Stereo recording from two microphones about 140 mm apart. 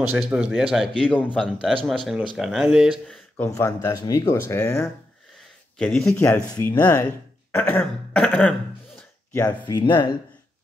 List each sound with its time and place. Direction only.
0.2 s speech: 5° right (ahead or behind)
0.9 s throat clearing: 10° left (ahead or behind)
1.4 s speech: centre (ahead or behind)
3.4 s speech: 20° left (ahead or behind)
4.0 s speech: 35° left (ahead or behind)
4.3 s speech: 20° left (ahead or behind)
5.4 s a sound: 5° left (ahead or behind)
6.2 s speech: 20° left (ahead or behind)
6.8 s throat clearing: 15° left (ahead or behind)
9.5 s speech: 30° left (ahead or behind)